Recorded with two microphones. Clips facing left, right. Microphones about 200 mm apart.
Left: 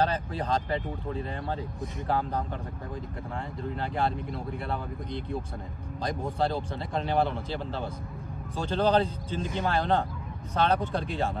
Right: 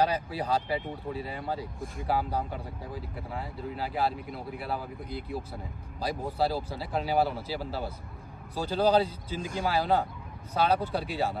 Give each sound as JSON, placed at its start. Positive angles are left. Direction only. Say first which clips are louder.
{"t": 0.0, "sound": "speech", "louder": "even", "side_deg": -10}